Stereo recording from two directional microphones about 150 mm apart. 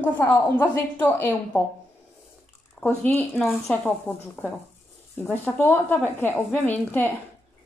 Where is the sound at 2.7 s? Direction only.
10° left (ahead or behind).